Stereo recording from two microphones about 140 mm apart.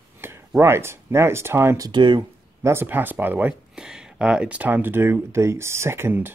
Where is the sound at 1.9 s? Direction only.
35° right (ahead or behind).